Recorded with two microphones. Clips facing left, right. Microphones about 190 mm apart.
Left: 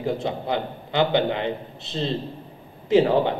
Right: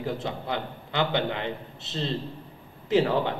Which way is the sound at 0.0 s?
20° left (ahead or behind).